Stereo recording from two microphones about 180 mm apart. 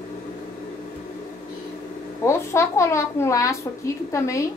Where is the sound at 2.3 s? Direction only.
15° left (ahead or behind).